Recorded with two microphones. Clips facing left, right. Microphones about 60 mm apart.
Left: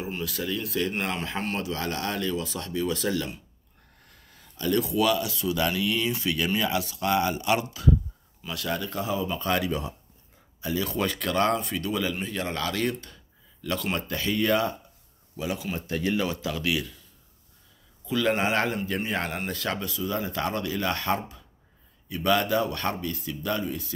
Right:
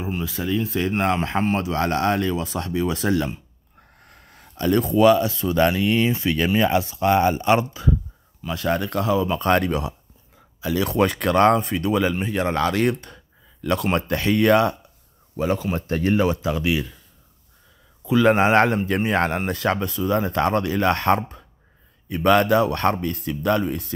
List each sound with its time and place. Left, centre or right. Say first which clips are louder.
0.2 s speech: right 8 dB; right
8.5 s speech: right 7 dB; right
8.8 s speech: right 7 dB; right
9.5 s speech: right 7 dB; right
10.9 s speech: right 8 dB; right
15.3 s speech: right 8 dB; right
18.0 s speech: right 8 dB; right